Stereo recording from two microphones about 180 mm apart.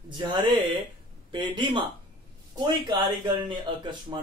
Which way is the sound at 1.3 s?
25° right (ahead or behind).